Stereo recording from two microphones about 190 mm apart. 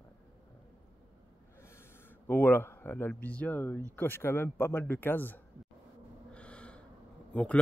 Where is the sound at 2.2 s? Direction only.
10° left (ahead or behind).